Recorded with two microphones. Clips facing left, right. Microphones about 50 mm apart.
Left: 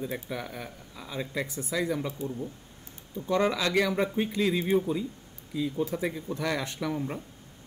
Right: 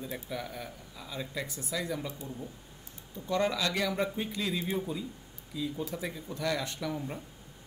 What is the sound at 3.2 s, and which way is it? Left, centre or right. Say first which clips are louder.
Speech: left 3 dB; left.